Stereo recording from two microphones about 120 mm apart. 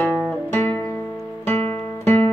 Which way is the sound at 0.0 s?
15° left (ahead or behind).